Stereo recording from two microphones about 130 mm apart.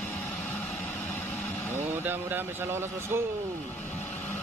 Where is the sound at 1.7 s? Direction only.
15° right (ahead or behind).